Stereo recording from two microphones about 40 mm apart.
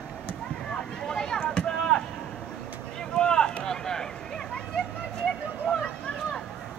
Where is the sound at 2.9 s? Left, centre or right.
Centre.